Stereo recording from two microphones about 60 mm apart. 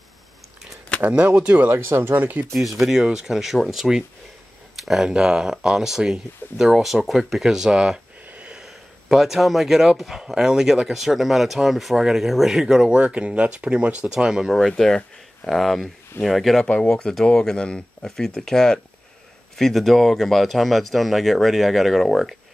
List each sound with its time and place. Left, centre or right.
1.0 s speech: right
1.7 s speech: right
2.5 s speech: centre
13.0 s speech: centre
14.5 s speech: centre
16.6 s speech: left
16.9 s speech: centre